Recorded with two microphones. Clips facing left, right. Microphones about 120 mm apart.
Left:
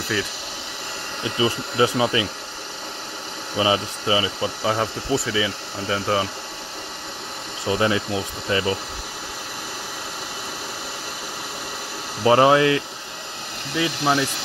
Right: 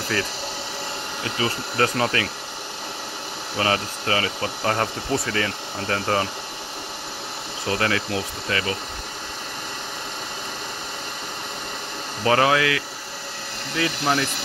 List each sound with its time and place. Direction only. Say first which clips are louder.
1.4 s speech: left 3 dB; 10° left (ahead or behind)
3.5 s speech: left 3 dB; 10° left (ahead or behind)
7.6 s speech: left 3 dB; 15° left (ahead or behind)
12.3 s speech: left 4 dB; 25° left (ahead or behind)
13.7 s speech: left 2 dB; 15° left (ahead or behind)